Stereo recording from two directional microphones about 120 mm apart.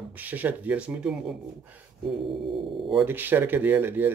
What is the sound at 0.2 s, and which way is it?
Speech, 15° right (ahead or behind).